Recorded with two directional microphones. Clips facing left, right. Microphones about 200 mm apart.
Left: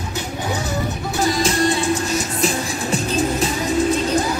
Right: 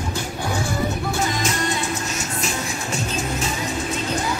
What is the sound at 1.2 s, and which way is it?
Music, 35° left (ahead or behind).